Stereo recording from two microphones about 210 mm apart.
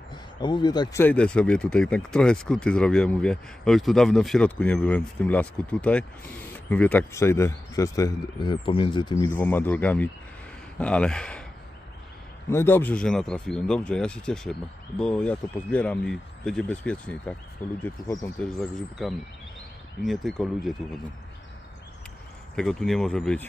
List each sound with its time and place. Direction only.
0.1 s speech: 20° left (ahead or behind)
1.0 s speech: 5° left (ahead or behind)
12.4 s speech: 10° left (ahead or behind)
18.4 s speech: centre (ahead or behind)
22.6 s speech: centre (ahead or behind)